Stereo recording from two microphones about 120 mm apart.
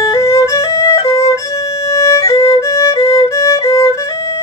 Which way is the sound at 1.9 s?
25° left (ahead or behind).